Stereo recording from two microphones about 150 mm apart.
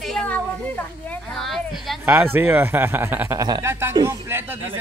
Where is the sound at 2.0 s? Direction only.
15° right (ahead or behind).